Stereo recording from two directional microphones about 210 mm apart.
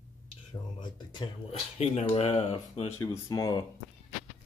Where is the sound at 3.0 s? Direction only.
15° left (ahead or behind).